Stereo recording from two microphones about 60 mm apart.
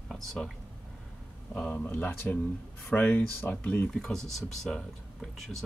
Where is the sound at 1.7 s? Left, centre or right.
Left.